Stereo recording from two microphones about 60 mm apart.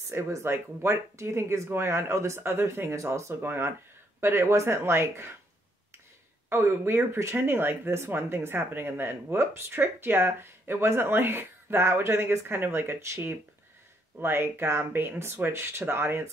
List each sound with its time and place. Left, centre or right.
0.3 s speech: right
3.4 s speech: right
6.5 s speech: right